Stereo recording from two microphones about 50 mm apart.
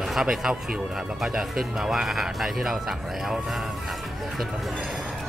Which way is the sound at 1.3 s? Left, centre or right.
Centre.